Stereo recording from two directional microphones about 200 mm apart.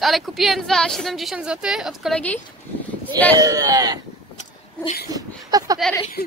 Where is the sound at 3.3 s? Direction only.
15° right (ahead or behind).